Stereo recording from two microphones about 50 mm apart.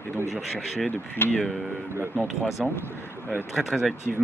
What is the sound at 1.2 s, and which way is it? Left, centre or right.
Speech, left.